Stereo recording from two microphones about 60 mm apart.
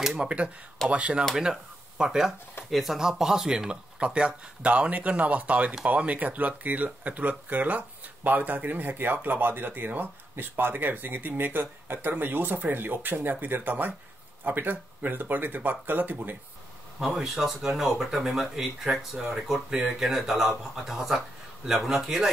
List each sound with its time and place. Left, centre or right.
0.1 s speech: centre
17.0 s speech: centre